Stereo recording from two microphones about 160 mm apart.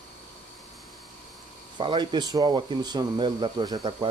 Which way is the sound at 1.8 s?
30° right (ahead or behind).